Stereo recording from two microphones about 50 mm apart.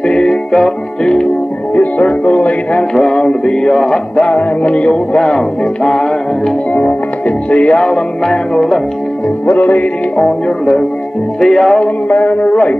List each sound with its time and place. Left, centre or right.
0.0 s music: centre
1.8 s music: left
4.2 s music: left; by 8.8 s centre
9.5 s music: left
11.4 s music: centre
11.8 s music: left
12.4 s music: left